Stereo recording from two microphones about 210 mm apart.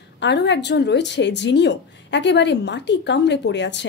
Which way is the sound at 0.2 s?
55° left (ahead or behind).